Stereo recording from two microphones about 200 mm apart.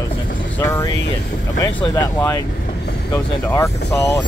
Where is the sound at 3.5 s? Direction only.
15° left (ahead or behind).